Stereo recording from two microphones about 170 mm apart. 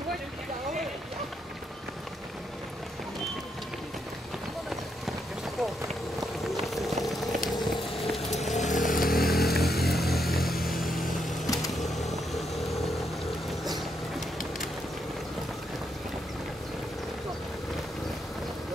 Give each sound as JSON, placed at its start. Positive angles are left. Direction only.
{"t": 5.6, "sound": "run", "side_deg": 0}
{"t": 6.6, "sound": "boiling", "side_deg": 0}
{"t": 7.6, "sound": "run", "side_deg": 0}
{"t": 8.5, "sound": "chainsaw", "side_deg": 45}
{"t": 8.9, "sound": "chainsaw", "side_deg": 55}
{"t": 9.6, "sound": "vehicle", "side_deg": 65}
{"t": 10.1, "sound": "vehicle", "side_deg": 0}
{"t": 11.4, "sound": "vehicle", "side_deg": 20}
{"t": 12.1, "sound": "vehicle", "side_deg": 0}
{"t": 13.5, "sound": "a sound", "side_deg": 0}